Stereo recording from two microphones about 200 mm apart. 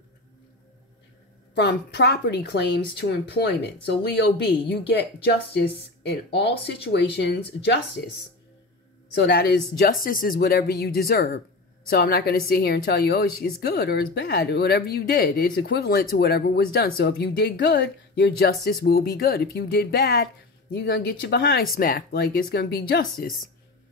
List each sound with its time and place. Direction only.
1.5 s speech: 60° left (ahead or behind)
9.2 s a woman's voice: 60° left (ahead or behind)